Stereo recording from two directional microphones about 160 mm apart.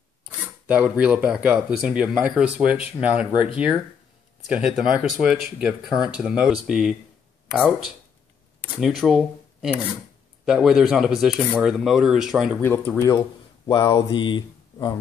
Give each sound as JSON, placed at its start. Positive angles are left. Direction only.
{"t": 0.7, "sound": "speech", "side_deg": -5}
{"t": 4.5, "sound": "speech", "side_deg": -5}
{"t": 12.5, "sound": "speech", "side_deg": 10}